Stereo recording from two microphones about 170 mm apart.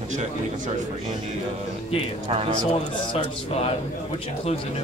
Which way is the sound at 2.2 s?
35° right (ahead or behind).